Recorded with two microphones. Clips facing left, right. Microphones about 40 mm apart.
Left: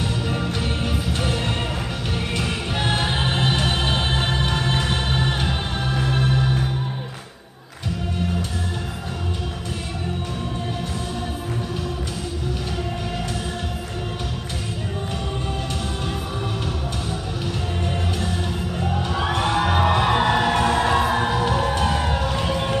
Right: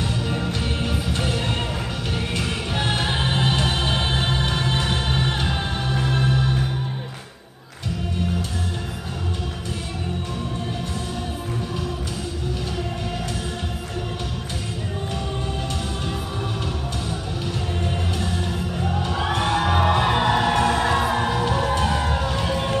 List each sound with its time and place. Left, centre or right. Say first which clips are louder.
0.0 s music: even; centre
18.8 s music: left 1 dB; centre